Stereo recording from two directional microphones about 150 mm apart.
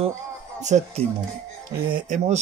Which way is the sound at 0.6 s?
45° right (ahead or behind).